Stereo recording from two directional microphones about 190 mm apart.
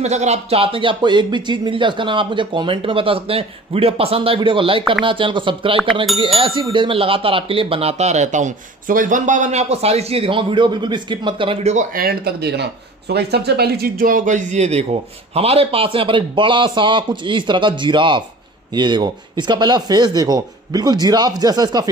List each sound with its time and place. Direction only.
0.0 s speech: 35° right (ahead or behind)
11.7 s speech: 45° right (ahead or behind); by 21.9 s 20° right (ahead or behind)